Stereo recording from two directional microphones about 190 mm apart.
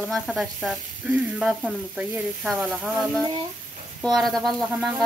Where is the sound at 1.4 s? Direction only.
Centre (ahead or behind).